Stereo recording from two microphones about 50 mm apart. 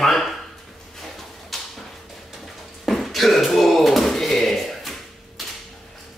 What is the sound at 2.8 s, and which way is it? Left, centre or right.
Beatboxing, centre.